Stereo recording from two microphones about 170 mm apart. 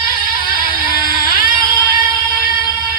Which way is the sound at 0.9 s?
60° left (ahead or behind).